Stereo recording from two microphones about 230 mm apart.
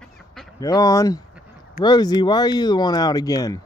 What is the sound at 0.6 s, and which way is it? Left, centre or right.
Speech, centre.